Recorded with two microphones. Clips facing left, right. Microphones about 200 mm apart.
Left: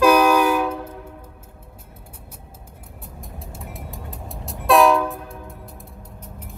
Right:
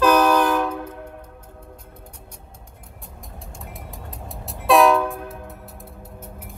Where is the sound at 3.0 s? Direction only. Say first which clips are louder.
Left 3 dB; centre (ahead or behind).